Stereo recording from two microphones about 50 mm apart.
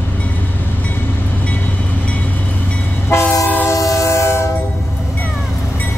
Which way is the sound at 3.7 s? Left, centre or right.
Left.